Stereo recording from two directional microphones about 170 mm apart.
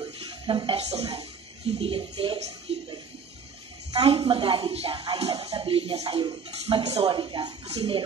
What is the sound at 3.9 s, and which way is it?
A woman's voice, 30° right (ahead or behind).